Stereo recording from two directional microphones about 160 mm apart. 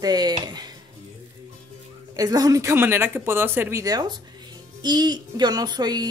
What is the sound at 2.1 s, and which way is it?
Speech, 25° right (ahead or behind).